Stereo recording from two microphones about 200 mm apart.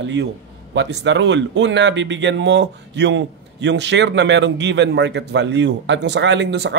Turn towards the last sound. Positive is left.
turn(degrees=-60)  # may be behind; listen again after turning